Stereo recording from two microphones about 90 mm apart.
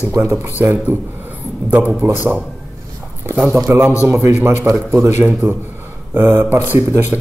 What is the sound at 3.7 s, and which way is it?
Speech, 25° right (ahead or behind).